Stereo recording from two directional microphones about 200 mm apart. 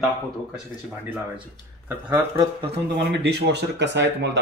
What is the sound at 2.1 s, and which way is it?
Speech, 10° right (ahead or behind).